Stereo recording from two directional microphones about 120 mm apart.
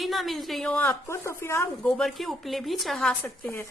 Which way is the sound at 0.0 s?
Centre (ahead or behind).